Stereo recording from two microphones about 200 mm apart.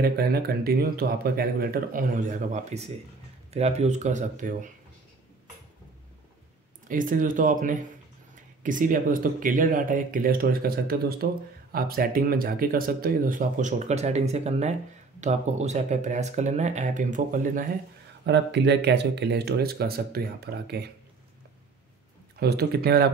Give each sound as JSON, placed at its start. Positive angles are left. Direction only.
{"t": 0.0, "sound": "speech", "side_deg": -50}
{"t": 6.9, "sound": "speech", "side_deg": -40}
{"t": 18.2, "sound": "speech", "side_deg": -60}
{"t": 22.4, "sound": "speech", "side_deg": -55}